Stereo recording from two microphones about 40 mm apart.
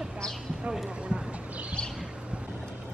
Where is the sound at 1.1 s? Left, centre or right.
Right.